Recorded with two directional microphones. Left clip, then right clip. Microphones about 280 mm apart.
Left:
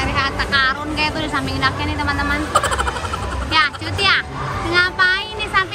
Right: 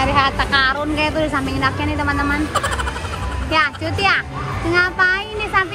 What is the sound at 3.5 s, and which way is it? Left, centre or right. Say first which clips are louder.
Music: even; centre.